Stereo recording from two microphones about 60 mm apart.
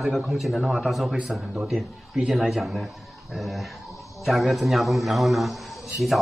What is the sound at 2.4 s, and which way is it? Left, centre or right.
A man's voice, centre.